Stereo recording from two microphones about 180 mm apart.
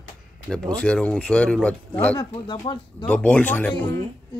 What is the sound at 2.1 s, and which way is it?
Speech, 25° left (ahead or behind).